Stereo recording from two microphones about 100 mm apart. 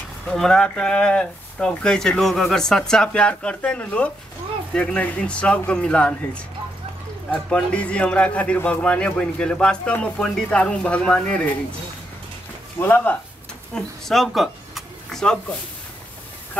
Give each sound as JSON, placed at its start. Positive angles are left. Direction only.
{"t": 0.3, "sound": "speech", "side_deg": 5}
{"t": 12.7, "sound": "speech", "side_deg": 20}
{"t": 13.7, "sound": "speech", "side_deg": 0}